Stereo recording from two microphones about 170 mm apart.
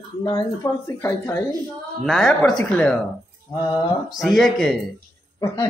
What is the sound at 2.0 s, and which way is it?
Speech, 5° left (ahead or behind).